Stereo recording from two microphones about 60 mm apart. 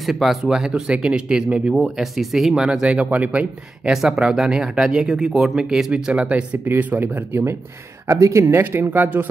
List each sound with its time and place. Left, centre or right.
0.0 s speech: centre; by 3.4 s right
3.8 s speech: centre
6.6 s speech: right
8.1 s speech: right